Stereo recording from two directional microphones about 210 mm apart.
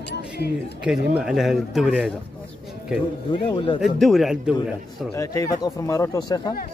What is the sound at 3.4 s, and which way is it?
Speech, 25° left (ahead or behind).